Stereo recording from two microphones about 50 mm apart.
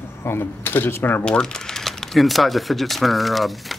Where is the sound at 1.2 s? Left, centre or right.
Centre.